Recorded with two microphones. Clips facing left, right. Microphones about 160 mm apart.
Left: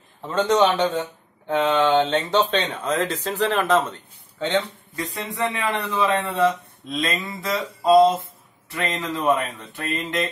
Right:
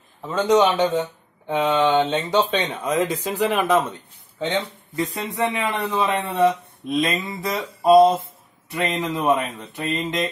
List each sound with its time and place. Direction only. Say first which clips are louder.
0.3 s a man's voice: right 1 dB; 10° right (ahead or behind)